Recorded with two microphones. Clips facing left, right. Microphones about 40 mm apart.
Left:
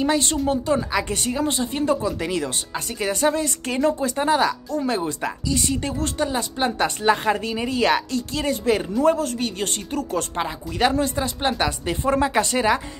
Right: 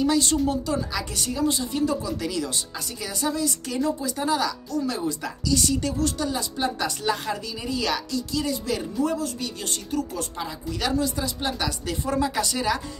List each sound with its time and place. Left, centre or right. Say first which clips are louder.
0.0 s a woman's voice: left 1 dB; left